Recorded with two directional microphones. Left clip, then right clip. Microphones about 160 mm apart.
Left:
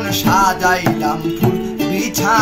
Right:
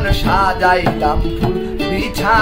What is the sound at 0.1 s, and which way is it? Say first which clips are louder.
Music: left 2 dB; 20° right (ahead or behind).